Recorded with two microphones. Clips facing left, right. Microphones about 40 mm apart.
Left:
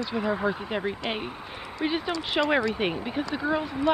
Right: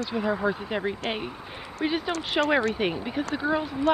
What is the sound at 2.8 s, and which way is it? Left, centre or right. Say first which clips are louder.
Speech: right 1 dB; centre.